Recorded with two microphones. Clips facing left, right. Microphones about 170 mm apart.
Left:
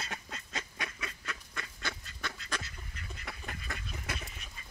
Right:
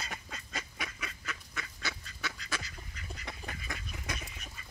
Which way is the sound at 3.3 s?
15° right (ahead or behind).